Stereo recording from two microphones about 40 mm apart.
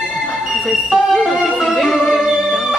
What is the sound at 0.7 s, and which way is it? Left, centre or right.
Music, centre.